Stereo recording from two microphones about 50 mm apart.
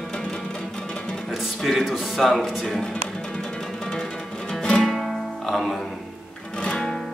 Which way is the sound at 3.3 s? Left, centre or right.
Centre.